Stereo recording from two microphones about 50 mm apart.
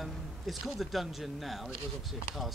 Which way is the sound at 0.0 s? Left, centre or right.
Centre.